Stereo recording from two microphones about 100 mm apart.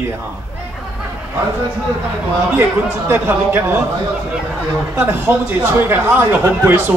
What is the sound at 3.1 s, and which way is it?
Speech, 25° right (ahead or behind).